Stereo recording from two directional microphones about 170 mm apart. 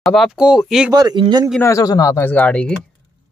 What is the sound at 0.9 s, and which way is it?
Speech, 25° right (ahead or behind).